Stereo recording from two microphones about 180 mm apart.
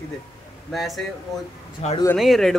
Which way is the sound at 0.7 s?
Centre (ahead or behind).